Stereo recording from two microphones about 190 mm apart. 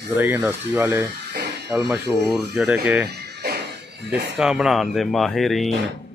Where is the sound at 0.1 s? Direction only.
10° right (ahead or behind).